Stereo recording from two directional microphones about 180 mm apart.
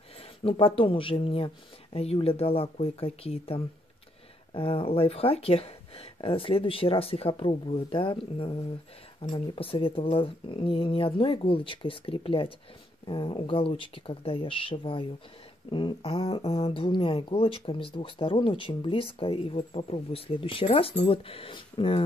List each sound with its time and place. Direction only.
0.4 s speech: 30° left (ahead or behind)